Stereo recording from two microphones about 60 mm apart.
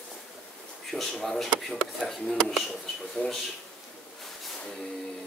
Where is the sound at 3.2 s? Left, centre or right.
Left.